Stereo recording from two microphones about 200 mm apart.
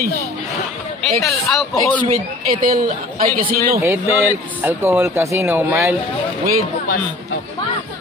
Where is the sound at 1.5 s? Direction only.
Centre (ahead or behind).